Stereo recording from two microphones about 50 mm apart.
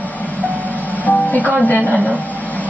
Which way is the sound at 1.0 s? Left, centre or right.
Left.